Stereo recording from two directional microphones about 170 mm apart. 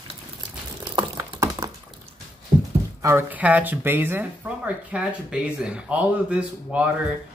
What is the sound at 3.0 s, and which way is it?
Speech, 15° right (ahead or behind).